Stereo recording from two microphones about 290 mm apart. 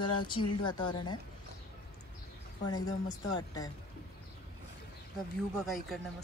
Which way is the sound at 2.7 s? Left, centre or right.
Centre.